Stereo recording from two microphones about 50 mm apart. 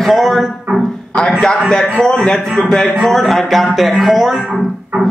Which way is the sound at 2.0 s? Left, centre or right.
Centre.